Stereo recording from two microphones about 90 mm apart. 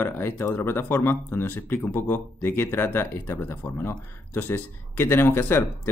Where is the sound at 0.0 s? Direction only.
25° left (ahead or behind).